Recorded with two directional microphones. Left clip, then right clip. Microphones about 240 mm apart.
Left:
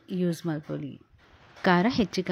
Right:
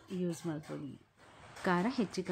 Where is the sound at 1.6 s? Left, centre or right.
Centre.